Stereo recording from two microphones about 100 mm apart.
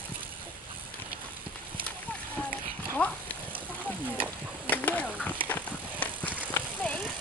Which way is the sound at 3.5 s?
15° right (ahead or behind).